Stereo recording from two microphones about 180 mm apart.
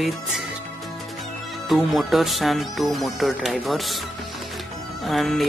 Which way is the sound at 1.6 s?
Centre (ahead or behind).